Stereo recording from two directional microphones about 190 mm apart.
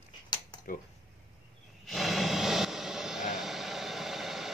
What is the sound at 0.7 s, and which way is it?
Speech, 50° left (ahead or behind).